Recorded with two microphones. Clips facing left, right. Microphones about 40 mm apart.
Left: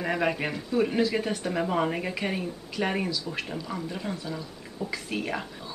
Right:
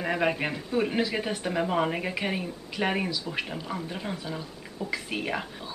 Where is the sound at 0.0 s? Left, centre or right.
Centre.